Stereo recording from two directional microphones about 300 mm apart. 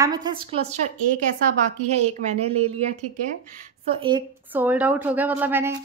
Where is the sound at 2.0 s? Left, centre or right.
Right.